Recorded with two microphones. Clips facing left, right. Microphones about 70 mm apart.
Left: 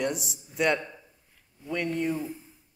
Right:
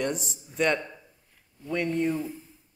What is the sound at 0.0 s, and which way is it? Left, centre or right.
A man's voice, centre.